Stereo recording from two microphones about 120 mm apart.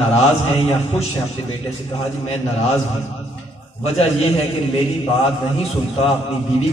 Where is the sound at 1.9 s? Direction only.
65° left (ahead or behind).